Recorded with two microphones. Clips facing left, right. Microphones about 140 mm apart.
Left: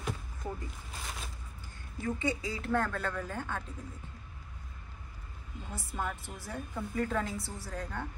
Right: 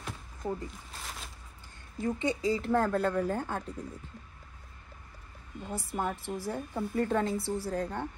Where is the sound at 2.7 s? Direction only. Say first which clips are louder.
Right 3 dB; 30° right (ahead or behind).